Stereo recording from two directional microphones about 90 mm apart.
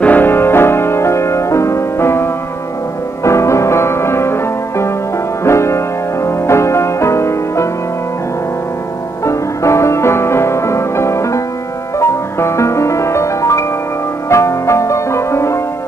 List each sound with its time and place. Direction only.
0.0 s music: 20° left (ahead or behind)
9.2 s music: 35° left (ahead or behind)